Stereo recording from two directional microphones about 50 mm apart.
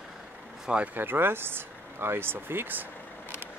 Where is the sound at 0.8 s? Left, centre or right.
Right.